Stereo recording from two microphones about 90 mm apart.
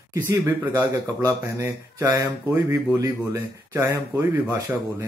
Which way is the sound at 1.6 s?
35° right (ahead or behind).